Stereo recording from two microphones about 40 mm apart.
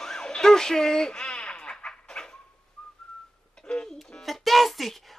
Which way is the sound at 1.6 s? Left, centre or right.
Left.